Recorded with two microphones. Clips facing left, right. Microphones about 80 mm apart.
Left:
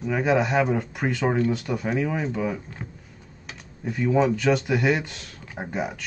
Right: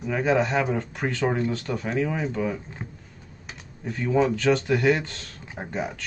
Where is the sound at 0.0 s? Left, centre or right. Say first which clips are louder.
Left 1 dB; centre.